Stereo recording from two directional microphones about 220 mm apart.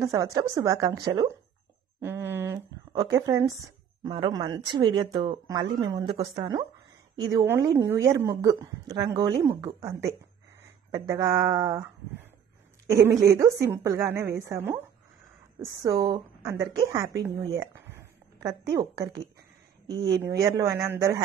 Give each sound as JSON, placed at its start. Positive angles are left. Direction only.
{"t": 0.0, "sound": "a woman's voice", "side_deg": -15}
{"t": 13.4, "sound": "a woman's voice", "side_deg": -15}